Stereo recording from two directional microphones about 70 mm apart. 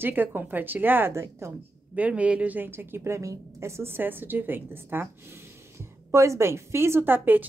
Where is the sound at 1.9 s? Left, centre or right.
Centre.